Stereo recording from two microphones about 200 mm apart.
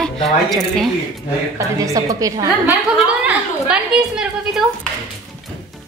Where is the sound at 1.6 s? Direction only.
15° right (ahead or behind).